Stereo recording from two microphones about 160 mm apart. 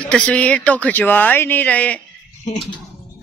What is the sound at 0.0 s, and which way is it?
Speech, 10° left (ahead or behind).